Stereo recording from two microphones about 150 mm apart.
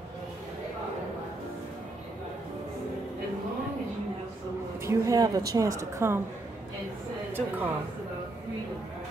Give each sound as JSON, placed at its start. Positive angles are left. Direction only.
{"t": 4.8, "sound": "speech", "side_deg": -20}
{"t": 7.3, "sound": "a woman's voice", "side_deg": -15}